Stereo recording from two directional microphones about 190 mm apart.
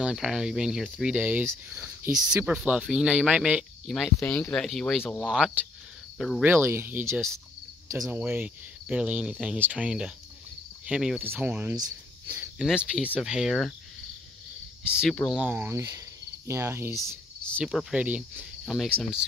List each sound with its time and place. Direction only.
0.0 s speech: 5° right (ahead or behind)
6.1 s cricket: centre (ahead or behind)
6.4 s speech: 10° right (ahead or behind)
11.7 s speech: 20° right (ahead or behind)
12.5 s speech: 5° right (ahead or behind)
15.0 s speech: centre (ahead or behind)